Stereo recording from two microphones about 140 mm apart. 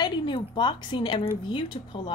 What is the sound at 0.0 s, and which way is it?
A woman's voice, 35° left (ahead or behind).